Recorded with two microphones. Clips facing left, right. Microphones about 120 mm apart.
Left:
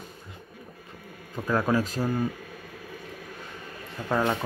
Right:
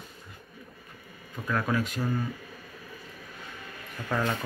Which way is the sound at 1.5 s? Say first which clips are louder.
Left 4 dB; 30° left (ahead or behind).